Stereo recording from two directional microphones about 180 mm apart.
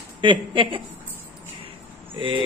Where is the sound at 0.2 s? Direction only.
30° right (ahead or behind).